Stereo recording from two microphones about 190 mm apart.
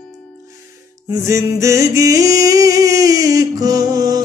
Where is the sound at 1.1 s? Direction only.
15° right (ahead or behind).